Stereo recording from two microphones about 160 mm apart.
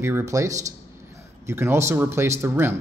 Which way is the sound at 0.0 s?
20° right (ahead or behind).